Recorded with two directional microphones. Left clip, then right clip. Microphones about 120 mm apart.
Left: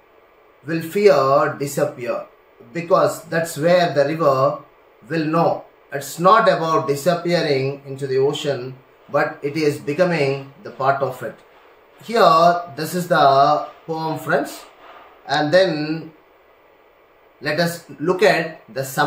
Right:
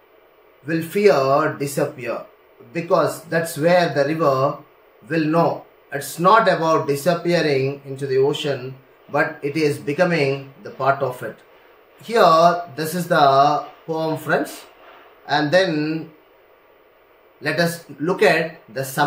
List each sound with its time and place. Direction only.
0.7 s speech: 15° right (ahead or behind)
17.4 s speech: 10° right (ahead or behind)